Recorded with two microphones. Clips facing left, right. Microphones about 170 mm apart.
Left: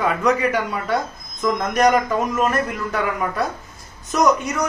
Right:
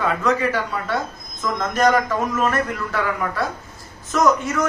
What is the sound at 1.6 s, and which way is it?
A man's voice, 15° left (ahead or behind).